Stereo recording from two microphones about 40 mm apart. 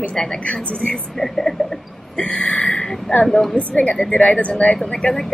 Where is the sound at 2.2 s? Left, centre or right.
Left.